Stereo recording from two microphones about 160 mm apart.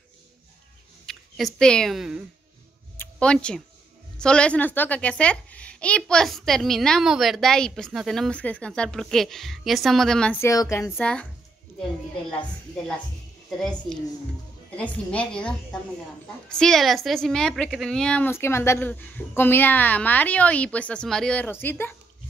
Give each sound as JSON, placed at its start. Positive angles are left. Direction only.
{"t": 1.0, "sound": "speech", "side_deg": 0}
{"t": 3.0, "sound": "a sound", "side_deg": 5}
{"t": 4.2, "sound": "a woman's voice", "side_deg": 5}
{"t": 10.4, "sound": "a woman's voice", "side_deg": 20}
{"t": 12.3, "sound": "a woman's voice", "side_deg": 5}